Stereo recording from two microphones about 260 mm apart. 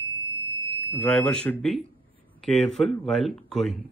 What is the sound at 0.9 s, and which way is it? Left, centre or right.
Speech, centre.